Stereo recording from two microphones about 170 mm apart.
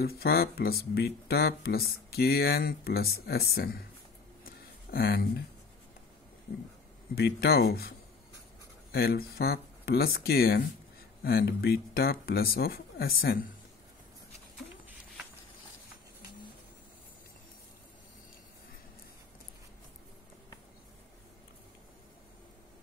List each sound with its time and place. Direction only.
0.0 s speech: 65° left (ahead or behind)
4.5 s a sound: 60° left (ahead or behind)
7.2 s speech: 70° left (ahead or behind)
8.9 s speech: 65° left (ahead or behind)